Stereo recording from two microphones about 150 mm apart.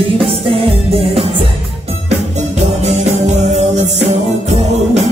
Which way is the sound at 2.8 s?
50° right (ahead or behind).